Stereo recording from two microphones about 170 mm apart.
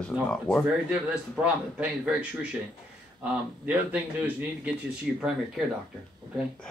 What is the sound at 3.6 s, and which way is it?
A man's voice, 10° right (ahead or behind).